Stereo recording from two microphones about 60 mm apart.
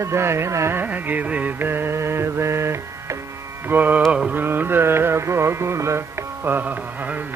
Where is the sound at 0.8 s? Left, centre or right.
Right.